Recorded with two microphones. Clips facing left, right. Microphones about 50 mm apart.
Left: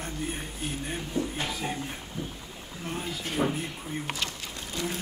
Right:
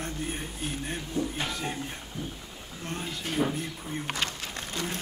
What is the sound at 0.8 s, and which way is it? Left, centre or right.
Speech, centre.